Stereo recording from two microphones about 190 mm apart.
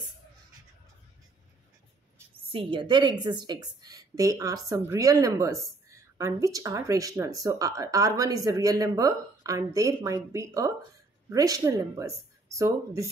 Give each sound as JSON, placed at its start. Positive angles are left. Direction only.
{"t": 2.5, "sound": "a woman's voice", "side_deg": -25}